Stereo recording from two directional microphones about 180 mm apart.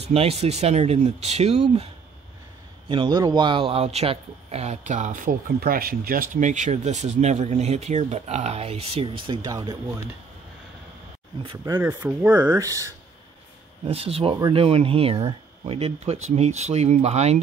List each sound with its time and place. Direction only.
0.0 s speech: 35° right (ahead or behind)
2.9 s speech: 25° right (ahead or behind)
11.4 s speech: 20° right (ahead or behind)
13.8 s speech: 35° right (ahead or behind)